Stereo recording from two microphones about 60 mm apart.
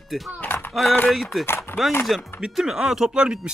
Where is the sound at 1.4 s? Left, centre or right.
Left.